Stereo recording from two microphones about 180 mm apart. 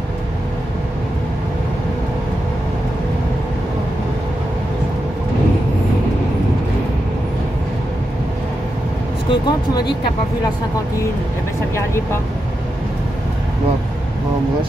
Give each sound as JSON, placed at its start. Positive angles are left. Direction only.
{"t": 9.3, "sound": "speech", "side_deg": 25}
{"t": 11.7, "sound": "speech", "side_deg": 15}